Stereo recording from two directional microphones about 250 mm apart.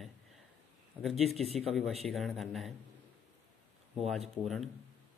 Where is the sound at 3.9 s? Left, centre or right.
Centre.